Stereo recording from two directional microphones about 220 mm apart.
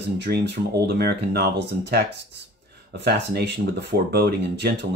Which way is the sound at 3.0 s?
50° right (ahead or behind).